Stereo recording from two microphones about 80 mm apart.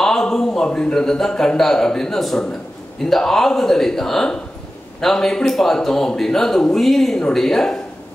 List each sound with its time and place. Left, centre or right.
0.0 s a man's voice: centre